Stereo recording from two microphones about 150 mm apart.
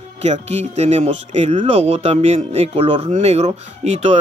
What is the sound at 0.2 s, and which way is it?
Speech, 45° right (ahead or behind).